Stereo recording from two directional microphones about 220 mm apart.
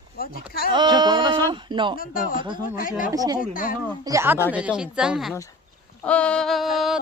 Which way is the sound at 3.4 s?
40° left (ahead or behind).